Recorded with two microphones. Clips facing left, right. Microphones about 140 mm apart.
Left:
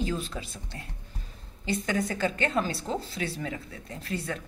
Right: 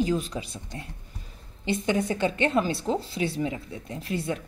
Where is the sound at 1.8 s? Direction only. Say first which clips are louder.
Right 4 dB; 20° right (ahead or behind).